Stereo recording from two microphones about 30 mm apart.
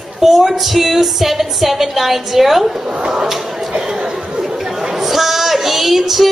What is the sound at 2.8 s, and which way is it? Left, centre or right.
Speech, right.